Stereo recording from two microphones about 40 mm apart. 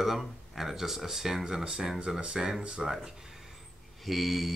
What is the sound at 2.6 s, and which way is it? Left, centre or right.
Speech, right.